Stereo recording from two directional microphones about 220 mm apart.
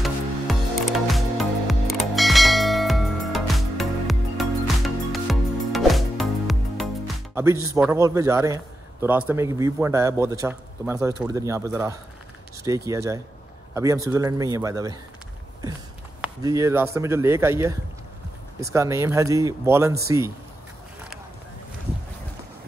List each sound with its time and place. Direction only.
0.0 s music: centre (ahead or behind)
7.3 s a man's voice: 10° right (ahead or behind)
16.4 s a man's voice: 15° right (ahead or behind)